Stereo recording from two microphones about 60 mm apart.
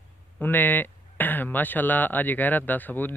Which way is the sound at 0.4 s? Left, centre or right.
Left.